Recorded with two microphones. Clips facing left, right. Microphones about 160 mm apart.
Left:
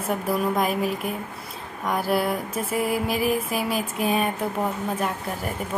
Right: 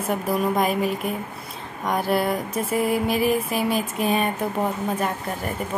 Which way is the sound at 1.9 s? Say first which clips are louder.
Right 1 dB; 5° left (ahead or behind).